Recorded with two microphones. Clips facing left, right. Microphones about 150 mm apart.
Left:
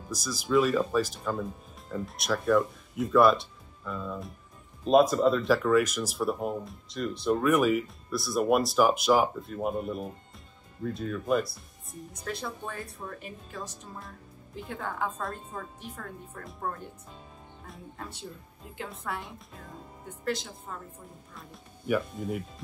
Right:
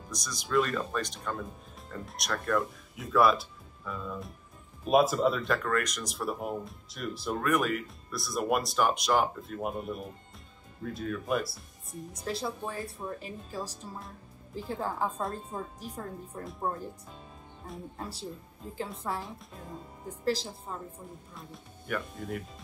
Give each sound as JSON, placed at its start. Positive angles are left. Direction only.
{"t": 0.1, "sound": "speech", "side_deg": 5}
{"t": 12.3, "sound": "speech", "side_deg": -30}
{"t": 17.9, "sound": "speech", "side_deg": -35}
{"t": 19.1, "sound": "speech", "side_deg": 0}
{"t": 20.1, "sound": "speech", "side_deg": -30}
{"t": 21.4, "sound": "speech", "side_deg": 5}